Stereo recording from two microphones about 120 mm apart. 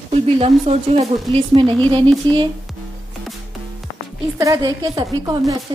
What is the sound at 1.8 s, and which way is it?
Speech, 40° right (ahead or behind).